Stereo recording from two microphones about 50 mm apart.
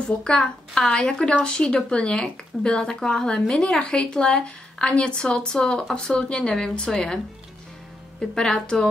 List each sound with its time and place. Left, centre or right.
0.0 s a woman's voice: centre
8.2 s a woman's voice: centre